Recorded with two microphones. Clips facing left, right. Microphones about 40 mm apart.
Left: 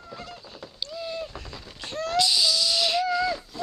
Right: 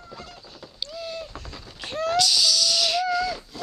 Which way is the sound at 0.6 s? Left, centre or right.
Centre.